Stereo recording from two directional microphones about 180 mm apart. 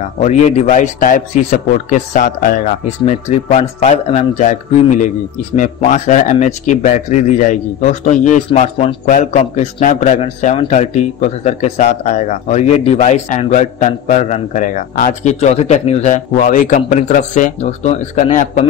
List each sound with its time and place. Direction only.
0.2 s a man's voice: 40° left (ahead or behind)
5.6 s speech: 45° left (ahead or behind)
8.5 s a man's voice: 30° left (ahead or behind)